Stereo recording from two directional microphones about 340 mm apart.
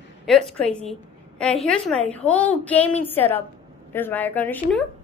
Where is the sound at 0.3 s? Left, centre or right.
Centre.